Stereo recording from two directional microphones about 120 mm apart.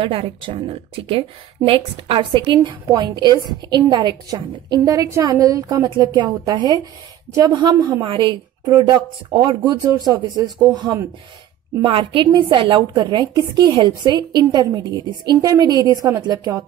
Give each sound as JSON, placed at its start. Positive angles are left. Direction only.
{"t": 0.0, "sound": "a woman's voice", "side_deg": -50}